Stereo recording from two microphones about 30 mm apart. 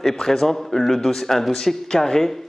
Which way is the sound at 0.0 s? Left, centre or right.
Centre.